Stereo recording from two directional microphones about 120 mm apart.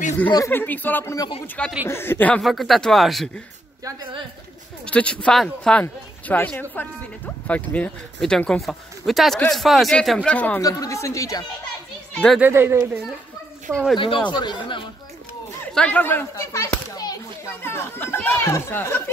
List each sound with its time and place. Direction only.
0.5 s speech: 15° left (ahead or behind)
2.4 s speech: centre (ahead or behind)
4.8 s speech: 10° left (ahead or behind)
10.6 s speech: 30° left (ahead or behind)
12.1 s a child's voice: 10° left (ahead or behind)
12.4 s speech: 20° right (ahead or behind)
13.7 s speech: 5° left (ahead or behind)
13.9 s speech: 45° left (ahead or behind)
15.7 s speech: 10° left (ahead or behind)
16.3 s a child's voice: 25° left (ahead or behind)
17.5 s speech: 20° left (ahead or behind)